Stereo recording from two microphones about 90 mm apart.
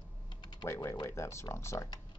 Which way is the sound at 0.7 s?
35° left (ahead or behind).